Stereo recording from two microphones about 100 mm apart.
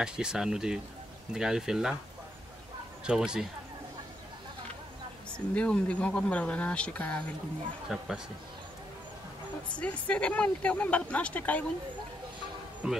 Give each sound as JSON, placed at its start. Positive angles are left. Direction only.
{"t": 0.0, "sound": "speech", "side_deg": -5}
{"t": 3.1, "sound": "speech", "side_deg": -5}
{"t": 5.5, "sound": "speech", "side_deg": 10}
{"t": 7.9, "sound": "speech", "side_deg": -5}
{"t": 9.8, "sound": "speech", "side_deg": 15}
{"t": 12.8, "sound": "speech", "side_deg": -5}